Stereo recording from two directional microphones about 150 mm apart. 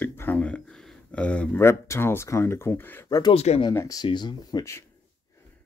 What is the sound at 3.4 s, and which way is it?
Speech, 45° left (ahead or behind).